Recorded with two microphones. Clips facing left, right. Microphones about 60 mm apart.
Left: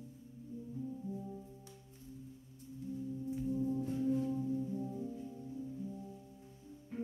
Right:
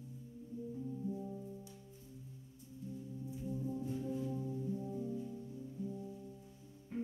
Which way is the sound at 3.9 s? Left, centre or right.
Left.